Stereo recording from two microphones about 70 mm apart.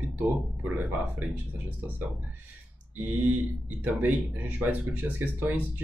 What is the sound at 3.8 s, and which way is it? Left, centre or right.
Speech, right.